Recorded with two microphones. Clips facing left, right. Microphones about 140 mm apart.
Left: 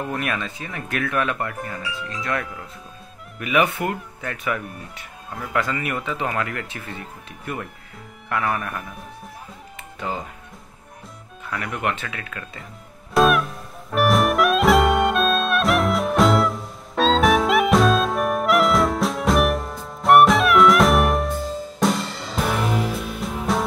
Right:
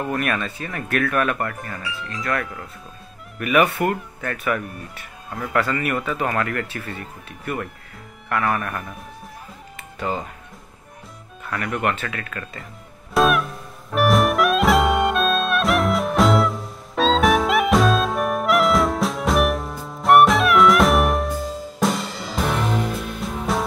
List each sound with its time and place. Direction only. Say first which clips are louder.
0.2 s speech: right 2 dB; 15° left (ahead or behind)
8.3 s speech: right 2 dB; 5° left (ahead or behind)
11.5 s speech: right 2 dB; 10° left (ahead or behind)
13.1 s music: left 1 dB; centre (ahead or behind)